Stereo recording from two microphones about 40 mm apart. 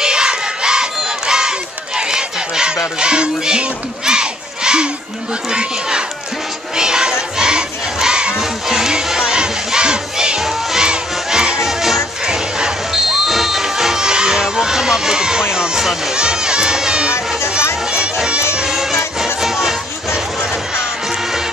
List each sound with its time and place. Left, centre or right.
0.0 s crowd: right
10.4 s crowd: centre
11.6 s music: centre
12.9 s music: centre
15.5 s a sound: centre
16.2 s crowd: centre
18.7 s music: centre